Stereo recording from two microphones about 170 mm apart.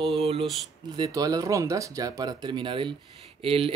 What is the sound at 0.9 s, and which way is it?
Speech, 25° right (ahead or behind).